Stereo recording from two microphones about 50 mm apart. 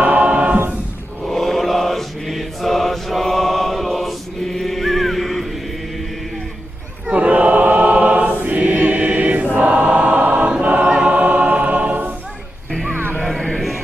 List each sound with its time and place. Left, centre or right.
0.0 s choir: right
1.2 s mantra: centre
7.1 s choir: right
13.2 s music: centre